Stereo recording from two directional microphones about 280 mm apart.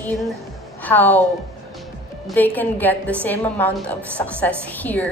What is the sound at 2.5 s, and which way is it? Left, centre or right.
A woman's voice, centre.